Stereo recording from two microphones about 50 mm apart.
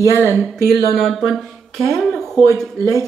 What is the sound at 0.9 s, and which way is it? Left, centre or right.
Speech, centre.